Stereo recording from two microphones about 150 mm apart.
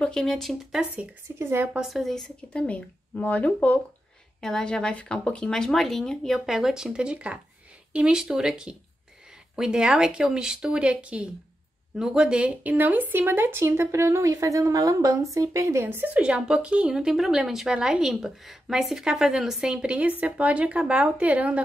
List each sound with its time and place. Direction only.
0.0 s speech: 5° left (ahead or behind)
1.9 s speech: centre (ahead or behind)